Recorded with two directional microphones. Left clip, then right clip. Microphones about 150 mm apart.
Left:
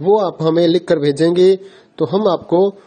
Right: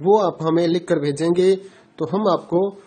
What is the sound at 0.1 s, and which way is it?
Speech, 30° left (ahead or behind).